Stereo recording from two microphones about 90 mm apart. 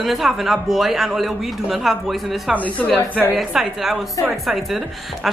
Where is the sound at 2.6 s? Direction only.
15° left (ahead or behind).